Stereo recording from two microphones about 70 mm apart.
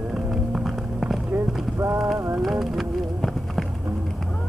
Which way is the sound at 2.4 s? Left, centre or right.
Centre.